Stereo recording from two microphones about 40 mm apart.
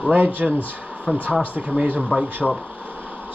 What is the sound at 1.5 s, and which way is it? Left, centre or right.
Speech, right.